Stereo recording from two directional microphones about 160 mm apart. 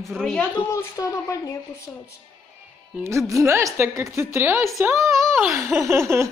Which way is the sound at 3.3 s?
20° right (ahead or behind).